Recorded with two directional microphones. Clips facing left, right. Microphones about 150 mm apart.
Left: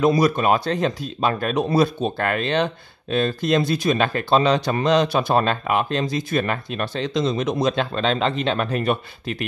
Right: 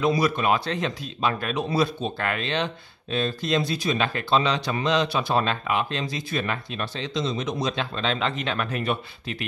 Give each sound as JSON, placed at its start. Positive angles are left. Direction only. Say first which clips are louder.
{"t": 0.0, "sound": "speech", "louder": "left 5 dB", "side_deg": 45}